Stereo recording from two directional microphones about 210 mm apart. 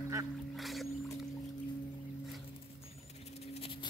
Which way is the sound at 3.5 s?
25° left (ahead or behind).